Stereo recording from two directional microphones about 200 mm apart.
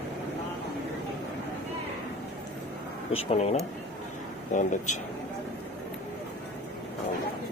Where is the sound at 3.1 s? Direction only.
30° left (ahead or behind).